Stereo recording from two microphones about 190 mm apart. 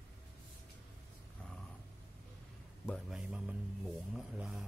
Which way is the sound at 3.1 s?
5° right (ahead or behind).